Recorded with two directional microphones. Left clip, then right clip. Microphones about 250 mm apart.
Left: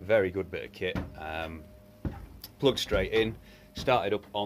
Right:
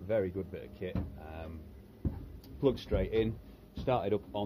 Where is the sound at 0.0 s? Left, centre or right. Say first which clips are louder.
Left 7 dB; centre.